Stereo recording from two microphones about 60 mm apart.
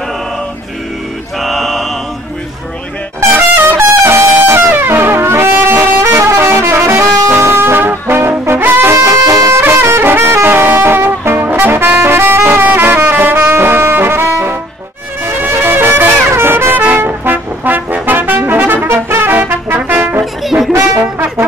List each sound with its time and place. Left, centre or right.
1.4 s mantra: centre
3.7 s brass instrument: right
5.7 s vehicle horn: right
6.0 s music: right
8.9 s music: right
9.5 s music: right
19.0 s music: right
19.3 s music: right
20.4 s music: centre
21.0 s brass instrument: right